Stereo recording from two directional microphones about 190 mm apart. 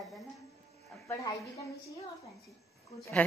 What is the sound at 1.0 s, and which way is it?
Speech, 15° left (ahead or behind).